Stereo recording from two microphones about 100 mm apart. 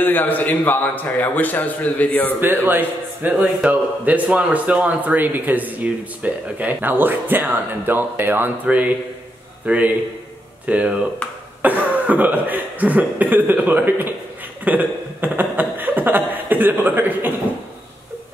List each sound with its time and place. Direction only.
0.0 s a man's voice: 20° left (ahead or behind)
2.4 s a man's voice: 20° right (ahead or behind)
14.6 s a sound: 15° right (ahead or behind)